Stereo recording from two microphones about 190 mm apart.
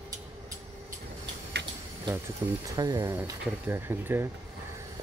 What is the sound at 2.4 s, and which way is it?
Speech, 15° right (ahead or behind).